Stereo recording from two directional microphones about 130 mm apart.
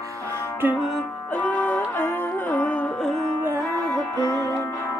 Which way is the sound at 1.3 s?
15° left (ahead or behind).